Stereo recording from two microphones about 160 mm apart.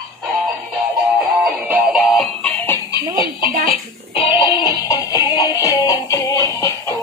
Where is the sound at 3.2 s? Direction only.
30° left (ahead or behind).